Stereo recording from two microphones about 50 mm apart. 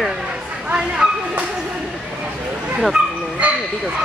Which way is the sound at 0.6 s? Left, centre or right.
Right.